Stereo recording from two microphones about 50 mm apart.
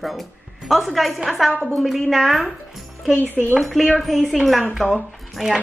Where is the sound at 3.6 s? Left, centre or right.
Centre.